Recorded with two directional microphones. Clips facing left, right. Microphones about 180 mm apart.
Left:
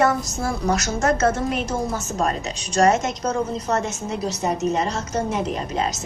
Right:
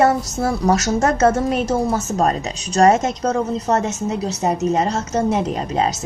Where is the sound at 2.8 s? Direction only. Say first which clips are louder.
Right 4 dB; 40° right (ahead or behind).